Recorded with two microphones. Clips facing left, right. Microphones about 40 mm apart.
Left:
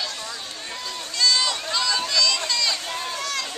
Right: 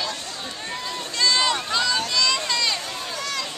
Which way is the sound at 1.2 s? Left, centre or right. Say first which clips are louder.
Right 1 dB; right.